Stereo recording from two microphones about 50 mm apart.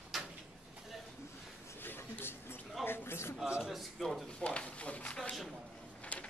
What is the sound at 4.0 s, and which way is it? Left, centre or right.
Drawer open or close, centre.